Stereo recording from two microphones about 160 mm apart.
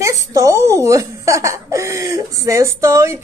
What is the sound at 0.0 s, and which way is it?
Speech, 20° right (ahead or behind).